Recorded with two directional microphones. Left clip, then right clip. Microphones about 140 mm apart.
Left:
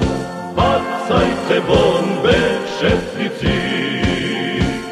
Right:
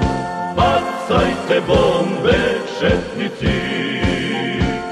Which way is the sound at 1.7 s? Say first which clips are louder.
Left 1 dB; 30° left (ahead or behind).